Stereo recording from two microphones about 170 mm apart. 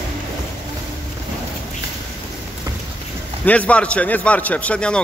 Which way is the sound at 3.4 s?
10° left (ahead or behind).